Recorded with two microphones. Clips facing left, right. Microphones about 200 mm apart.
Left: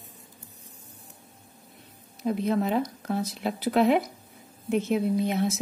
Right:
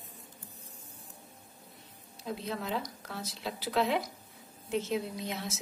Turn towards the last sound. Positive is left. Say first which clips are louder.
# left 13 dB
turn(degrees=55)  # may be behind; listen again after turning